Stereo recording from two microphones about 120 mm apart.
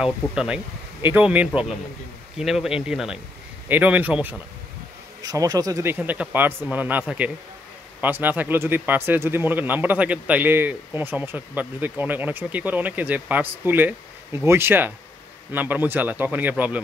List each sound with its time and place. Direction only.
0.0 s speech: 5° right (ahead or behind)
5.2 s speech: 30° right (ahead or behind)
5.9 s speech: 10° right (ahead or behind)